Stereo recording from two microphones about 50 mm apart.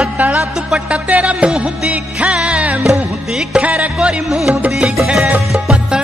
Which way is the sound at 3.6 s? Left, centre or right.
Right.